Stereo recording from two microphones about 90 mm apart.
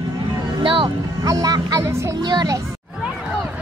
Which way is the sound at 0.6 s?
70° right (ahead or behind).